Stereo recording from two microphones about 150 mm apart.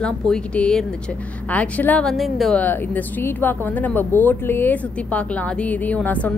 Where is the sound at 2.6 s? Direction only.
10° left (ahead or behind).